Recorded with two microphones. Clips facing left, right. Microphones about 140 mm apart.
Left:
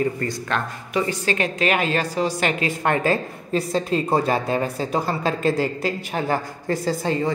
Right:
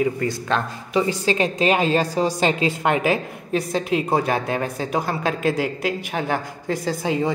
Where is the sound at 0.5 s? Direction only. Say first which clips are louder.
Right 2 dB; 25° right (ahead or behind); by 7.1 s centre (ahead or behind).